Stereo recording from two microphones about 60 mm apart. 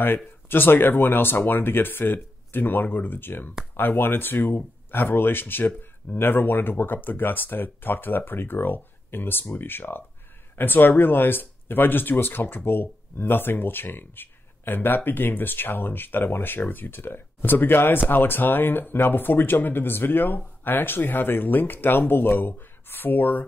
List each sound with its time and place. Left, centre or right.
0.5 s speech: left